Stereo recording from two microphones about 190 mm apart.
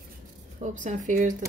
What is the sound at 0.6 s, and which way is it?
Speech, 40° right (ahead or behind).